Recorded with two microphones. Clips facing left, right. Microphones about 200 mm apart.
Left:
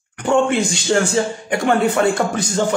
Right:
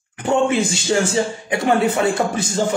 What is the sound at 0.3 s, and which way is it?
A man's voice, 5° right (ahead or behind).